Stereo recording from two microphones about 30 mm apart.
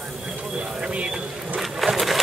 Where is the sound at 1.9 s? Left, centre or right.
Centre.